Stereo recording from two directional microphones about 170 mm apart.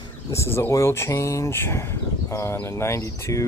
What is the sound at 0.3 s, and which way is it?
Speech, 15° left (ahead or behind).